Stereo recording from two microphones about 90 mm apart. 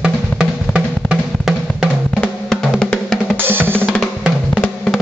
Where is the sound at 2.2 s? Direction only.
5° left (ahead or behind).